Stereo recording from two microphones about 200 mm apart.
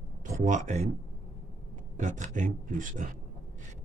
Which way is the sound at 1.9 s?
40° right (ahead or behind).